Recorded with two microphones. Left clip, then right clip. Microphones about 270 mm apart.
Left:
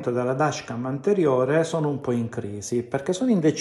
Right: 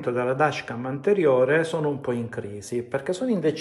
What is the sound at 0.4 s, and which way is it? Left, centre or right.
Speech, centre.